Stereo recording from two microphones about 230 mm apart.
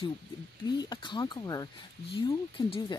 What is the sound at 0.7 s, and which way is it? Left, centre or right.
Speech, centre.